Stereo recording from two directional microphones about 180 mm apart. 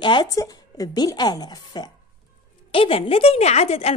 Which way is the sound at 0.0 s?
25° left (ahead or behind).